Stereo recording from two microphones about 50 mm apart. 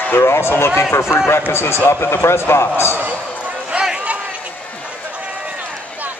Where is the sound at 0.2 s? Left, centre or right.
Left.